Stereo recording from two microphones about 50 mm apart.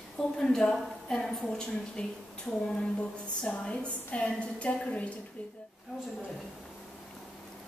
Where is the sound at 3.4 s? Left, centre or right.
Left.